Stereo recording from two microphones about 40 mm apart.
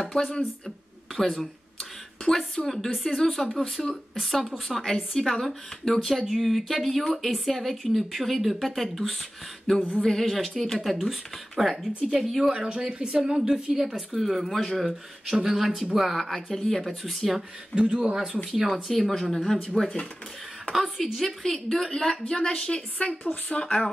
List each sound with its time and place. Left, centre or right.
1.1 s speech: centre
2.2 s a woman's voice: centre
3.5 s speech: centre
4.8 s a woman's voice: centre
12.4 s speech: right
13.5 s speech: centre
14.5 s a woman's voice: centre
14.8 s speech: centre
16.3 s speech: centre
17.7 s speech: right
18.1 s speech: centre
18.7 s a woman's voice: centre
21.0 s a woman's voice: centre; by 23.9 s left